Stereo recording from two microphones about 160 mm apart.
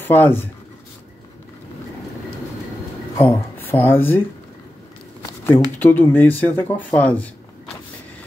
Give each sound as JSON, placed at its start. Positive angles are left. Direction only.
{"t": 0.0, "sound": "speech", "side_deg": 10}
{"t": 3.2, "sound": "speech", "side_deg": 10}
{"t": 5.4, "sound": "speech", "side_deg": 15}